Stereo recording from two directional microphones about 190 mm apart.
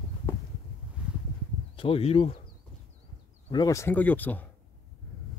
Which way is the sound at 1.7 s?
30° left (ahead or behind).